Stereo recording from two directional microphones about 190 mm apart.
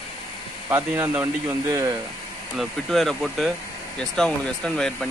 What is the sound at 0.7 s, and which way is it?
Speech, 10° right (ahead or behind).